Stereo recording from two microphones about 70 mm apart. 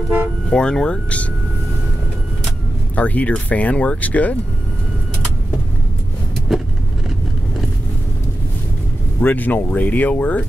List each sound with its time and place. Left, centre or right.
0.5 s speech: centre
3.0 s speech: left
9.2 s speech: left